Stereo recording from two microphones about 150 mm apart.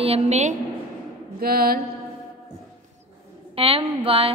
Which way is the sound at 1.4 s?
90° right.